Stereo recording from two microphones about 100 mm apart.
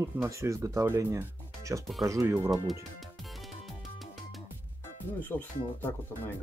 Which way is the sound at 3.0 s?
Centre (ahead or behind).